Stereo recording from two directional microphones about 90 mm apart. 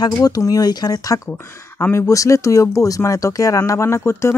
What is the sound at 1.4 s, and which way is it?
Speech, 30° left (ahead or behind).